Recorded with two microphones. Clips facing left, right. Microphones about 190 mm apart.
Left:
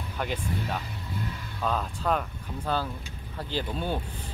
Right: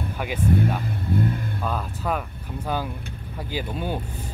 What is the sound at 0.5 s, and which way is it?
Speech, 55° right (ahead or behind).